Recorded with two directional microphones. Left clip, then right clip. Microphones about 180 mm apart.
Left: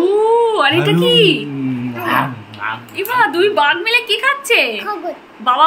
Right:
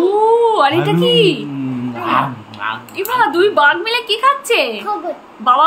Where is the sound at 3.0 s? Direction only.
15° right (ahead or behind).